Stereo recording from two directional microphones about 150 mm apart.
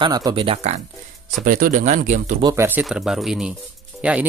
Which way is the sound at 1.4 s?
65° right (ahead or behind).